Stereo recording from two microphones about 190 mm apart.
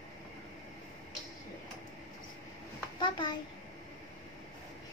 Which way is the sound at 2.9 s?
25° left (ahead or behind).